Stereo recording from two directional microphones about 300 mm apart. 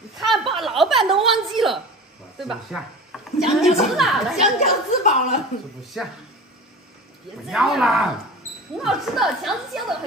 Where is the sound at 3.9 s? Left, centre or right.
Centre.